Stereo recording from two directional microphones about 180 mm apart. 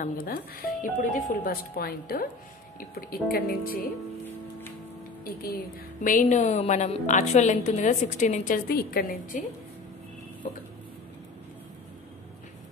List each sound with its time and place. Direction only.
0.0 s speech: 50° left (ahead or behind)
6.0 s a woman's voice: 45° left (ahead or behind)